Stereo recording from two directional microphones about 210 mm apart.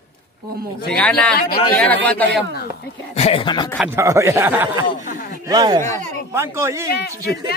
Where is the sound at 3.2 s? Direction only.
25° left (ahead or behind).